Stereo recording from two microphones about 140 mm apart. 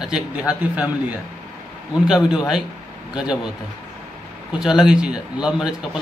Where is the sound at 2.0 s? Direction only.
5° right (ahead or behind).